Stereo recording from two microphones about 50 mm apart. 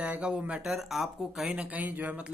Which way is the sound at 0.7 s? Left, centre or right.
Centre.